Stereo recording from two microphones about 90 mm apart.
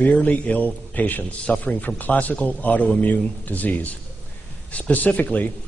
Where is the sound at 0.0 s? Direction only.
15° left (ahead or behind).